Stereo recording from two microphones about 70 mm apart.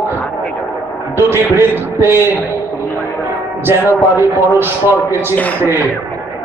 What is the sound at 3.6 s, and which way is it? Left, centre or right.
A man's voice, right.